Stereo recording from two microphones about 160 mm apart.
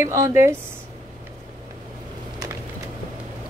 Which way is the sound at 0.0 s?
20° right (ahead or behind).